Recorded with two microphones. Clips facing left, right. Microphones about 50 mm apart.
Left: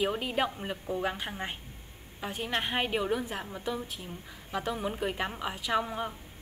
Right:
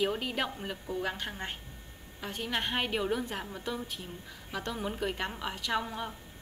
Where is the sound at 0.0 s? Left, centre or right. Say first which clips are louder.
Left 2 dB; centre.